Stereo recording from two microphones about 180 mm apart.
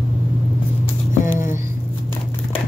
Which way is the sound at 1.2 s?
45° left (ahead or behind).